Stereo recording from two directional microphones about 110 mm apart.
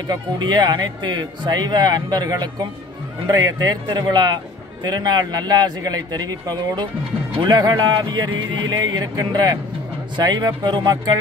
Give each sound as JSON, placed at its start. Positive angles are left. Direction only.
{"t": 0.1, "sound": "speech", "side_deg": -40}